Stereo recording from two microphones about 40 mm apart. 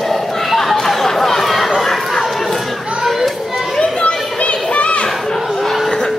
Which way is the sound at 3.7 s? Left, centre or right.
Left.